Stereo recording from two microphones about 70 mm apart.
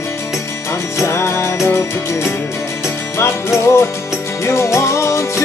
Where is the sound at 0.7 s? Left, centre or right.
Left.